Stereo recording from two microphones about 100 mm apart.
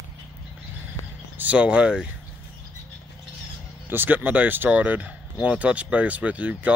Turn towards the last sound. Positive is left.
turn(degrees=-15)  # may be behind; listen again after turning